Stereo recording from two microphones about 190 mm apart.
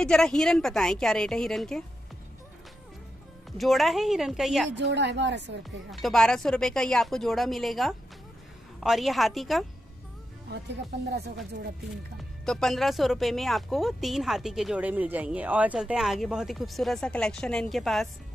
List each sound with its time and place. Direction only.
0.0 s speech: 5° left (ahead or behind)
3.5 s speech: centre (ahead or behind)
4.6 s a woman's voice: 65° right (ahead or behind)
5.9 s speech: centre (ahead or behind)
11.1 s speech: 60° right (ahead or behind)
12.4 s speech: 5° left (ahead or behind)